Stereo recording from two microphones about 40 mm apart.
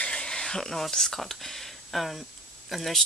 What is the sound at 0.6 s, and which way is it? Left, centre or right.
Speech, centre.